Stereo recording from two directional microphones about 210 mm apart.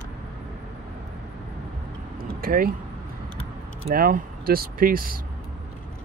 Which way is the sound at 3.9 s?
45° right (ahead or behind).